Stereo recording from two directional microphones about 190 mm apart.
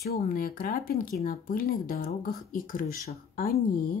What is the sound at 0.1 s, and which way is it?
Speech, 50° left (ahead or behind).